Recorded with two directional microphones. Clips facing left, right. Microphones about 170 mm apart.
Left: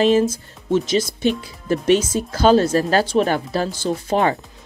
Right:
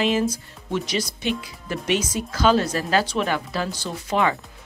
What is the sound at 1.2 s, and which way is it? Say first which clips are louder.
Speech: left 6 dB; 35° left (ahead or behind).